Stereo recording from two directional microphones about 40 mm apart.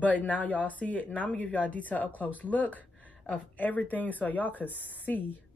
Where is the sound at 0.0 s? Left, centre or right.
Left.